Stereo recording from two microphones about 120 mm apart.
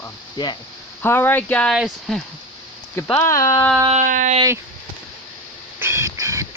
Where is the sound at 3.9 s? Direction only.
90° right.